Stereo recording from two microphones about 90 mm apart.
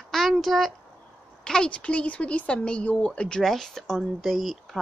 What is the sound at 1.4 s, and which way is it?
A woman's voice, 10° left (ahead or behind).